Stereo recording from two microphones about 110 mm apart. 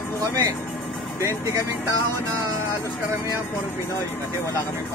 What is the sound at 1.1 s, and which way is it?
Speech, 30° right (ahead or behind).